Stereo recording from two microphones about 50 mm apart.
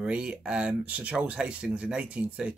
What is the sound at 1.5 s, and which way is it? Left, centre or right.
Speech, centre.